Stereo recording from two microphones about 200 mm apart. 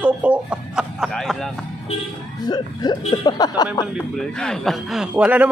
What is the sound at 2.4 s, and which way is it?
Speech, 20° left (ahead or behind).